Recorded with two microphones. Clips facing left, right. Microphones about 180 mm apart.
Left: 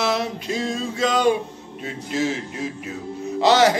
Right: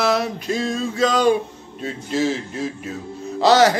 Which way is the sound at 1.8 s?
35° right (ahead or behind).